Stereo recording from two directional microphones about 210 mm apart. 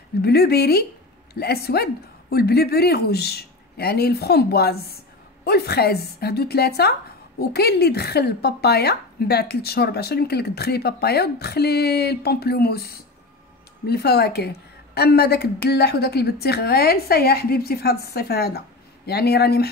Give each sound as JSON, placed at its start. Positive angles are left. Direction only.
{"t": 0.2, "sound": "a woman's voice", "side_deg": 50}